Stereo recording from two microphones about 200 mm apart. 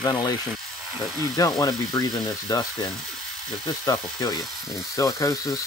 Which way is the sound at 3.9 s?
20° left (ahead or behind).